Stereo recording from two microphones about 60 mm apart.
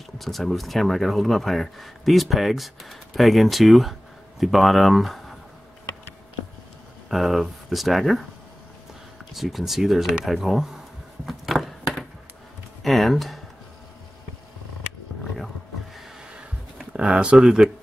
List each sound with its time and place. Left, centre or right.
0.2 s speech: centre
7.1 s speech: centre
9.2 s speech: centre
11.2 s a sound: centre
16.9 s speech: centre